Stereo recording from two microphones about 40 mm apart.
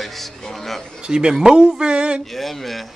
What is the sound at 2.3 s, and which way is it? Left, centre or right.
Speech, centre.